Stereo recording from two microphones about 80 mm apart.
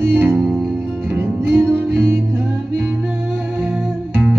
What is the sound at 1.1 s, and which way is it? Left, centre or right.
Music, right.